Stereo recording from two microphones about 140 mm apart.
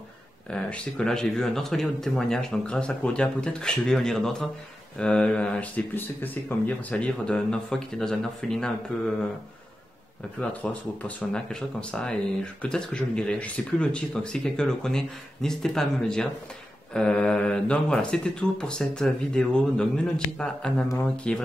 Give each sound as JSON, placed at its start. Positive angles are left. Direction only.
{"t": 0.5, "sound": "speech", "side_deg": 5}
{"t": 10.6, "sound": "speech", "side_deg": 10}